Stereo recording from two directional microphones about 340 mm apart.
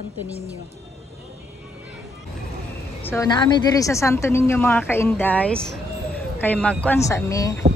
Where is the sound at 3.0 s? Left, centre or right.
Centre.